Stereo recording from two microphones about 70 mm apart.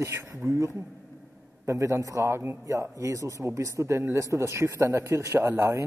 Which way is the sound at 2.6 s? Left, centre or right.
Right.